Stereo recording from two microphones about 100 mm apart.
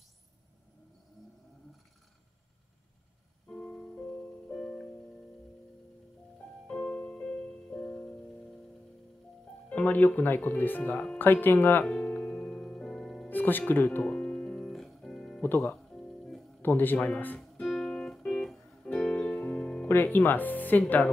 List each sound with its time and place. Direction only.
3.4 s music: 10° left (ahead or behind)
6.7 s music: 15° left (ahead or behind)
9.7 s speech: 15° left (ahead or behind)
11.8 s music: 5° left (ahead or behind)
13.3 s music: 20° left (ahead or behind); by 15.4 s 5° left (ahead or behind)
15.4 s speech: 20° left (ahead or behind)
15.7 s music: 5° left (ahead or behind)
16.6 s speech: 20° left (ahead or behind)
17.4 s music: centre (ahead or behind)
19.9 s speech: 20° left (ahead or behind)